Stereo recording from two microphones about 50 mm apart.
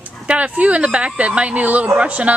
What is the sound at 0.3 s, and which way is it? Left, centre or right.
A woman's voice, right.